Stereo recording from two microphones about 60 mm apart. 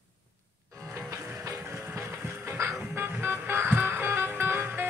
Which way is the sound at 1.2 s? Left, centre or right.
Right.